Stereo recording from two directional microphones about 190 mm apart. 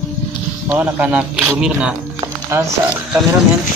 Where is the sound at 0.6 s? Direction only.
10° right (ahead or behind).